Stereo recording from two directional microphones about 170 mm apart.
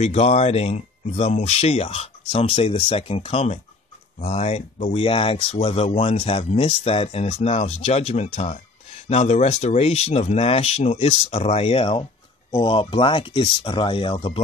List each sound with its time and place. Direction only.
0.0 s speech: 40° left (ahead or behind)